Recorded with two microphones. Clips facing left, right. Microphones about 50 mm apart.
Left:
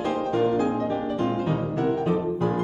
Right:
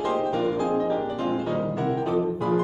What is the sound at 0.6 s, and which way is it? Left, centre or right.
Music, left.